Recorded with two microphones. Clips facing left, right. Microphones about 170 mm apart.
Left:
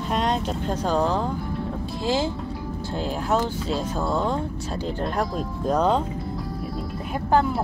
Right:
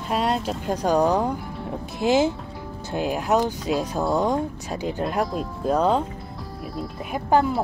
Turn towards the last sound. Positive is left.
turn(degrees=-5)  # may be behind; listen again after turning